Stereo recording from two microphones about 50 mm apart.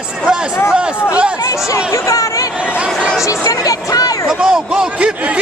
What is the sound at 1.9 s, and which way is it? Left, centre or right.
Chatter, left.